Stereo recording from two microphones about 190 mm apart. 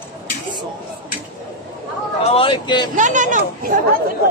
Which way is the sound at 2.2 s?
30° left (ahead or behind).